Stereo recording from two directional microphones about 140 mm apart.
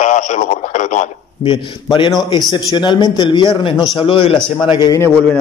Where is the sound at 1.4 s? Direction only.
40° left (ahead or behind).